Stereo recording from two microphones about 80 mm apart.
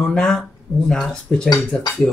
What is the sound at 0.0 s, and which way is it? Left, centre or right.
Speech, centre.